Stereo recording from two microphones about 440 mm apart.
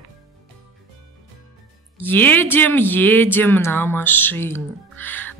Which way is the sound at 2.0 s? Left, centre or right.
Centre.